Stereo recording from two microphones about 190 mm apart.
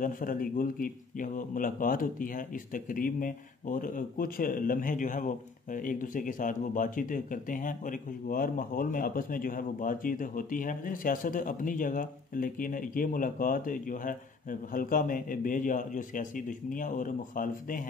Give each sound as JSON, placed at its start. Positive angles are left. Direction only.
{"t": 0.0, "sound": "a man's voice", "side_deg": 45}